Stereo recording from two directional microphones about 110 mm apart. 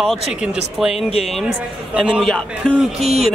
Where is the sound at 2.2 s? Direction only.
10° left (ahead or behind).